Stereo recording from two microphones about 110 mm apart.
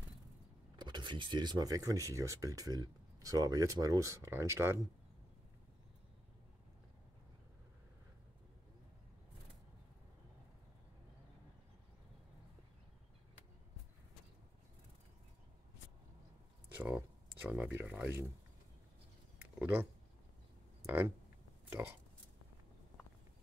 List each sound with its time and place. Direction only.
0.7 s speech: 45° right (ahead or behind); by 4.7 s 25° right (ahead or behind)
16.7 s a sound: 15° right (ahead or behind)
19.6 s speech: 20° right (ahead or behind)